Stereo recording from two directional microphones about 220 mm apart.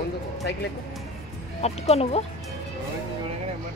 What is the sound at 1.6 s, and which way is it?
Speech, 30° left (ahead or behind).